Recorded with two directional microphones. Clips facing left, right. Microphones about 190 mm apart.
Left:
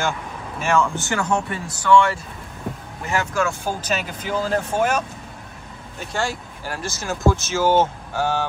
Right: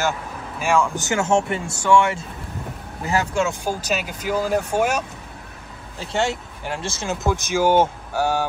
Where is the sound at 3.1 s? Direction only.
35° right (ahead or behind).